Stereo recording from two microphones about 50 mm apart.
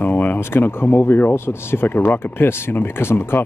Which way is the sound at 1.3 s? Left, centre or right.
Left.